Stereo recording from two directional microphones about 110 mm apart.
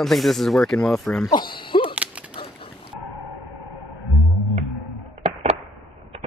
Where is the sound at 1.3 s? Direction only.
45° left (ahead or behind).